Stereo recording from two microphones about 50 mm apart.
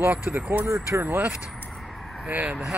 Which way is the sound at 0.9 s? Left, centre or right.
Right.